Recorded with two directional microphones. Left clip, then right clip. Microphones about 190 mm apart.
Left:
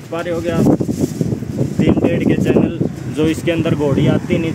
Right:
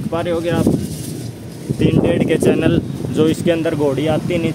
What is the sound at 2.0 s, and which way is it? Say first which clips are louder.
Speech: right 1 dB; 15° right (ahead or behind).